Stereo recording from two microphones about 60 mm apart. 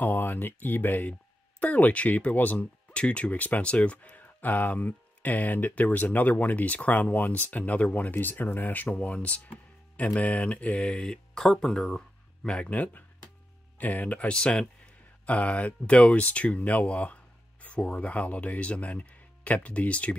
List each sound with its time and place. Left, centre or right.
0.0 s speech: left